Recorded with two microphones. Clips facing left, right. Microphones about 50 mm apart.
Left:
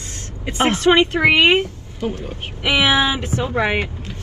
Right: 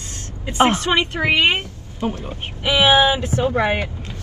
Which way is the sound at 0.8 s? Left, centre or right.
Left.